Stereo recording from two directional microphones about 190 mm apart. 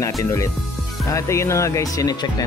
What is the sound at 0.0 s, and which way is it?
Speech, 15° left (ahead or behind).